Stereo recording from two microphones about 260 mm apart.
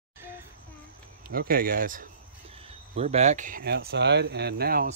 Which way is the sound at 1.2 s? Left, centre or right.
Right.